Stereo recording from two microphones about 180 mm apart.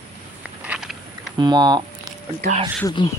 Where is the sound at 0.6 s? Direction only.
5° right (ahead or behind).